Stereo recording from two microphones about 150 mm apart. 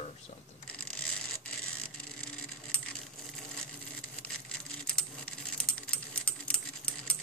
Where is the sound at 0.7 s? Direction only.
5° left (ahead or behind).